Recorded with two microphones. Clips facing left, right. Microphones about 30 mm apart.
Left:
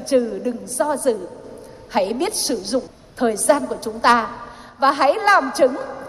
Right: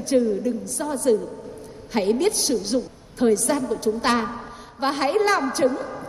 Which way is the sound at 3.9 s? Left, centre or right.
Left.